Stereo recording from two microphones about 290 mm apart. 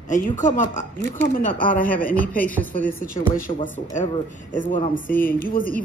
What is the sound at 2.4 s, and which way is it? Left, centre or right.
Speech, centre.